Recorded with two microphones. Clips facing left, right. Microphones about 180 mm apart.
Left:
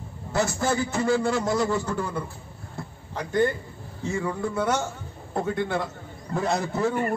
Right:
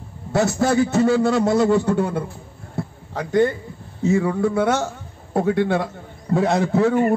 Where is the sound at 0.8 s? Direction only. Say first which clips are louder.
Right 6 dB; 70° right (ahead or behind).